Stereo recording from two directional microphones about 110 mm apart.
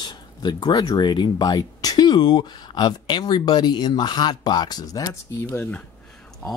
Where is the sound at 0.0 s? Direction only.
40° left (ahead or behind).